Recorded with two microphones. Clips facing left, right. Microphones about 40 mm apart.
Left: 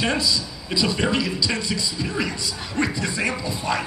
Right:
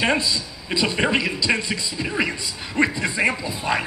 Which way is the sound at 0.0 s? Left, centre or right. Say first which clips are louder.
Right 2 dB; right.